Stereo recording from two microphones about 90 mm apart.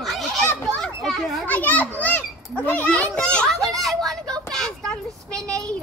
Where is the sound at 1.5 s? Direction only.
15° left (ahead or behind).